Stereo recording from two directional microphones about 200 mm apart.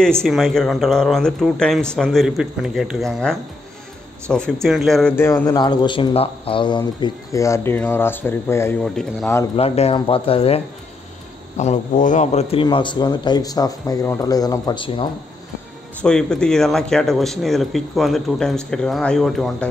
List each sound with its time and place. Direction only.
0.0 s a man's voice: 5° left (ahead or behind)
9.6 s a man's voice: 30° left (ahead or behind)
16.0 s speech: 5° left (ahead or behind)